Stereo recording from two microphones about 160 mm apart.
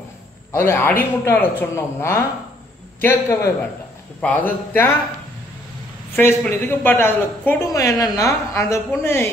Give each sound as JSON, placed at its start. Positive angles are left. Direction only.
{"t": 0.5, "sound": "a man's voice", "side_deg": 15}
{"t": 6.1, "sound": "a man's voice", "side_deg": 15}